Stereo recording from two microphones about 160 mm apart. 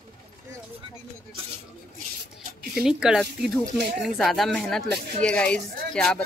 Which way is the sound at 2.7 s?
5° right (ahead or behind).